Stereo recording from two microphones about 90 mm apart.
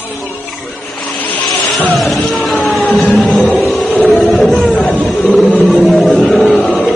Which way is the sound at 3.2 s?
Centre (ahead or behind).